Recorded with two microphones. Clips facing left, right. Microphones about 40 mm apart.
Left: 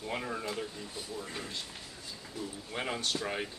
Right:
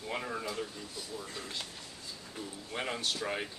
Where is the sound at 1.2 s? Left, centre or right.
Left.